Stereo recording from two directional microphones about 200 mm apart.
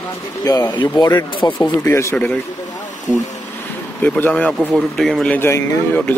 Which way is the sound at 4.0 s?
5° left (ahead or behind).